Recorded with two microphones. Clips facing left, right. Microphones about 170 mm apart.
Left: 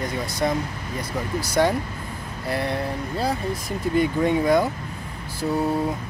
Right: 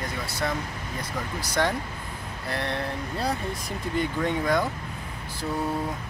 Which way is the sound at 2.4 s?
10° left (ahead or behind).